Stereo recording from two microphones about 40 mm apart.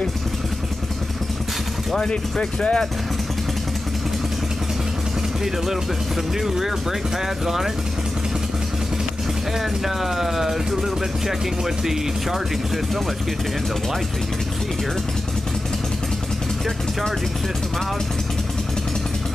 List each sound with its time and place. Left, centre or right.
2.0 s speech: centre
6.4 s speech: centre
9.8 s speech: centre